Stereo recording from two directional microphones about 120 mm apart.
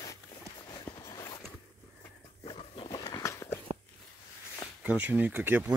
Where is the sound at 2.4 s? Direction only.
50° left (ahead or behind).